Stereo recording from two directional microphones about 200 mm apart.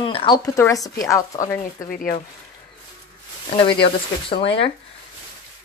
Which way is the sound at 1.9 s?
45° left (ahead or behind).